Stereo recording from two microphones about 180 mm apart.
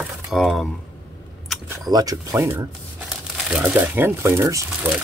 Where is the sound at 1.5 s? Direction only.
Centre (ahead or behind).